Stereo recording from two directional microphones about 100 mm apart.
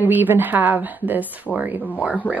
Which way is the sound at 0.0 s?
20° right (ahead or behind).